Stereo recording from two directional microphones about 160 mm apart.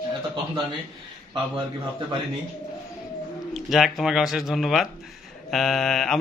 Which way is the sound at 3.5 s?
Centre (ahead or behind).